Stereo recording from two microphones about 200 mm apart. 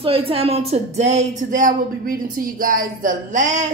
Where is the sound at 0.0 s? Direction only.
30° right (ahead or behind).